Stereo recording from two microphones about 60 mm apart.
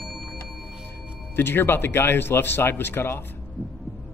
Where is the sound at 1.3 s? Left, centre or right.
Left.